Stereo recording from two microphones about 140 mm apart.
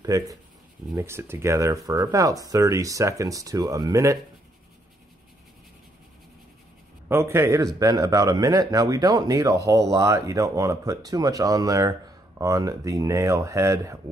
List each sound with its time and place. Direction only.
0.0 s speech: 25° right (ahead or behind)
7.1 s speech: 20° right (ahead or behind)